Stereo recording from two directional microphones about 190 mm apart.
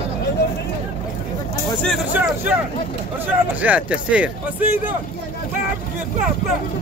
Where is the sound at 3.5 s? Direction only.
10° right (ahead or behind).